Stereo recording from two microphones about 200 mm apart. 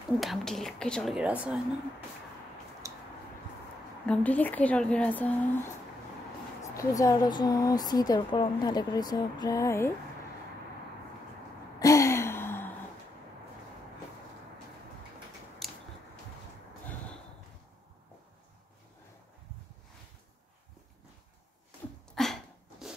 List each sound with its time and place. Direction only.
0.2 s speech: centre (ahead or behind)
2.8 s a sound: 15° right (ahead or behind)
4.0 s speech: 5° left (ahead or behind)
11.8 s gasp: 15° left (ahead or behind)
15.6 s a sound: centre (ahead or behind)
22.1 s sneeze: centre (ahead or behind)